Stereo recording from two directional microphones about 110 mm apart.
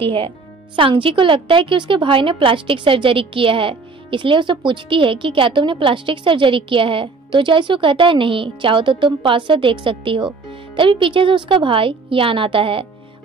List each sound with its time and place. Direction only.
0.0 s a woman's voice: 55° right (ahead or behind)